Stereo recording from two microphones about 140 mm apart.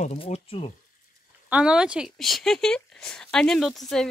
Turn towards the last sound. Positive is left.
turn(degrees=5)  # may be behind; listen again after turning